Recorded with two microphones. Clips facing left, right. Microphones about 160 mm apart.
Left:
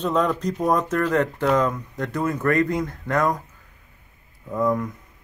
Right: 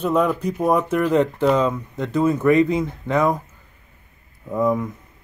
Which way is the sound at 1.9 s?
25° right (ahead or behind).